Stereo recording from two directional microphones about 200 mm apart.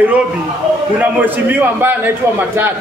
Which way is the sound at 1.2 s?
10° right (ahead or behind).